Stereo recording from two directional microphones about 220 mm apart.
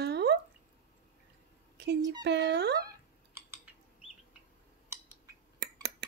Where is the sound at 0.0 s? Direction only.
50° right (ahead or behind).